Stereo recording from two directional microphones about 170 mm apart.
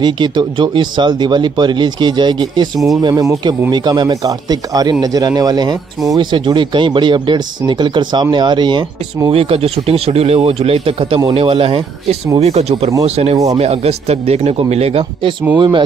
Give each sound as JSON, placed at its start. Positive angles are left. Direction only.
{"t": 0.0, "sound": "a man's voice", "side_deg": -25}